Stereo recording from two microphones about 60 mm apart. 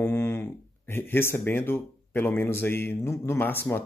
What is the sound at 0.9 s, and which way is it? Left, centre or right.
Speech, left.